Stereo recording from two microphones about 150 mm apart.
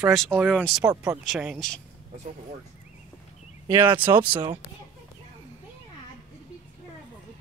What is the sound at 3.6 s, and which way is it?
Speech, 20° right (ahead or behind).